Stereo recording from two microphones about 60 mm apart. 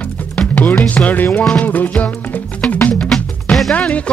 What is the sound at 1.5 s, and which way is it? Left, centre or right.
Music, left.